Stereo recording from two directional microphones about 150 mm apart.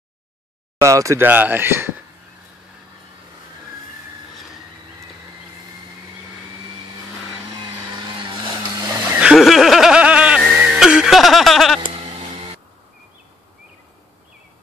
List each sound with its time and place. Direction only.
0.7 s speech: 20° right (ahead or behind)
7.6 s vehicle: 25° right (ahead or behind)
9.2 s snicker: 5° right (ahead or behind)
10.5 s music: 5° right (ahead or behind)
11.9 s a sound: 40° right (ahead or behind)